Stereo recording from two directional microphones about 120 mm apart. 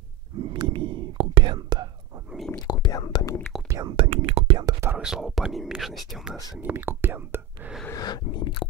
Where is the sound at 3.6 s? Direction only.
30° right (ahead or behind).